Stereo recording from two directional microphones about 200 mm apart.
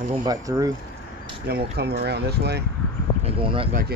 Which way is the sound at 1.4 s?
55° right (ahead or behind).